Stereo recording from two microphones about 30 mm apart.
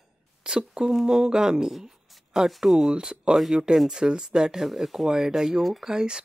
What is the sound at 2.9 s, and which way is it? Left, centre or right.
Speech, right.